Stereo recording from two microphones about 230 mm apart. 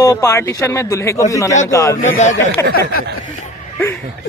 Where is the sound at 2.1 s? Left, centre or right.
Left.